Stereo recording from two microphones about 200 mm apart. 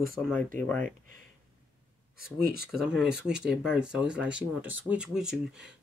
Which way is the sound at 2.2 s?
50° right (ahead or behind).